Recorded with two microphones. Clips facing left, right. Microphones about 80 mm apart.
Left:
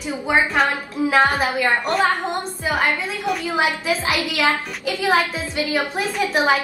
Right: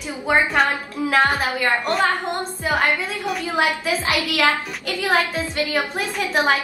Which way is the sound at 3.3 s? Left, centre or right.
Centre.